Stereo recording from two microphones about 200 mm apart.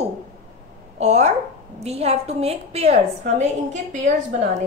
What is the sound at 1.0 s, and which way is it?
A woman's voice, 35° right (ahead or behind).